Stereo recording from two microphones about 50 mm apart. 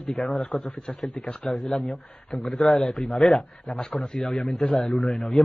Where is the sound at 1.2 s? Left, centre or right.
Centre.